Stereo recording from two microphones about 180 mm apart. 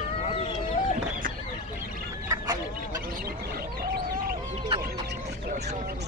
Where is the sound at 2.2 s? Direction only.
20° right (ahead or behind).